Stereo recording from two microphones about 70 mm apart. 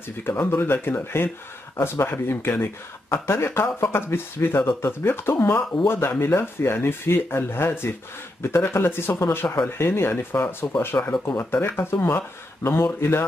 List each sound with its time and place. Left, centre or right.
0.2 s speech: left